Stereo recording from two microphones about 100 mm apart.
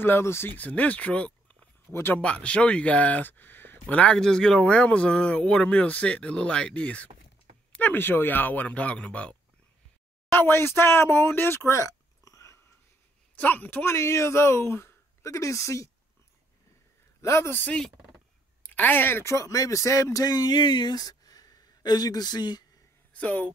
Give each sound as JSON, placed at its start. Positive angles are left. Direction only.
{"t": 0.0, "sound": "speech", "side_deg": 25}
{"t": 1.9, "sound": "speech", "side_deg": 25}
{"t": 2.1, "sound": "speech", "side_deg": 10}
{"t": 10.3, "sound": "speech", "side_deg": 25}
{"t": 13.4, "sound": "speech", "side_deg": 15}
{"t": 17.2, "sound": "speech", "side_deg": 25}
{"t": 23.1, "sound": "speech", "side_deg": 15}